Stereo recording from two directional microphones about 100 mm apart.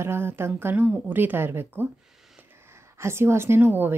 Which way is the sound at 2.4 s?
25° right (ahead or behind).